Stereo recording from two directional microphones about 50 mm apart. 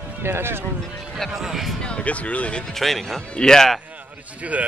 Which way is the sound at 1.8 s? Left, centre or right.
Left.